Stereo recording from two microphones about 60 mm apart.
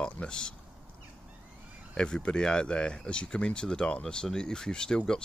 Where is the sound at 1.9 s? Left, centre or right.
Centre.